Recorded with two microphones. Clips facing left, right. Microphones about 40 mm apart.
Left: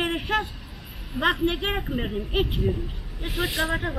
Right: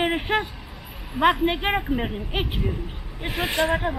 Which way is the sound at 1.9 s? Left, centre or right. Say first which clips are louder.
Right 3 dB; centre.